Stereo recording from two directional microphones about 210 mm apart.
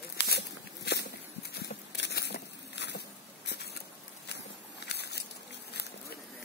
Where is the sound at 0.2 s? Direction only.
55° left (ahead or behind).